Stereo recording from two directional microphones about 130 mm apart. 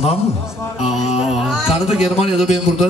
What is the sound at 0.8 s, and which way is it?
Music, 60° left (ahead or behind).